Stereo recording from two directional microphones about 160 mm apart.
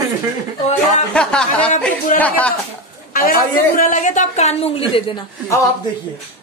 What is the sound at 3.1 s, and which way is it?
A man's voice, 60° left (ahead or behind).